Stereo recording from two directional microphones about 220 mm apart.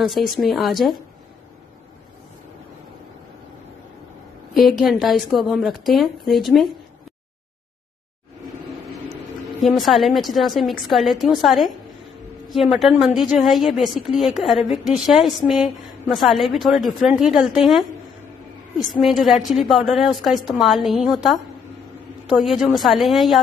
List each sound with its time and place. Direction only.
0.0 s a woman's voice: centre (ahead or behind)
4.6 s a woman's voice: centre (ahead or behind)
9.6 s a woman's voice: centre (ahead or behind)
18.9 s a woman's voice: centre (ahead or behind)